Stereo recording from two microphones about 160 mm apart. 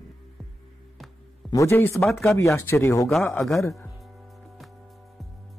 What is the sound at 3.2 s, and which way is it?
Speech, 10° left (ahead or behind).